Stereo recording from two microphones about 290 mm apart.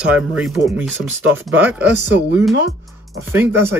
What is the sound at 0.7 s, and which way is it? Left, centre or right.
Speech, centre.